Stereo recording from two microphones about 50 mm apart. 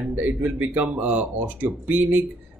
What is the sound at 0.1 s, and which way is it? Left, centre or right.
Speech, right.